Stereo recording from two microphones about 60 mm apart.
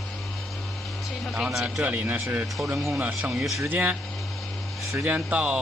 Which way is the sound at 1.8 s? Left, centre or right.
Right.